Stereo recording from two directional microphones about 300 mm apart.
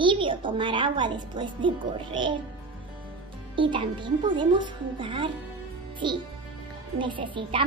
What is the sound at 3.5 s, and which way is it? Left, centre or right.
A woman's voice, centre.